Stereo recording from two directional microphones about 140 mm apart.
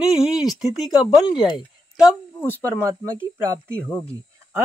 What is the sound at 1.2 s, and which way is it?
Speech, 30° left (ahead or behind).